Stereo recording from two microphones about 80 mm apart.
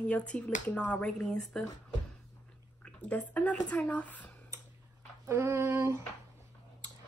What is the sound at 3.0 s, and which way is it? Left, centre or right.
A woman's voice, centre.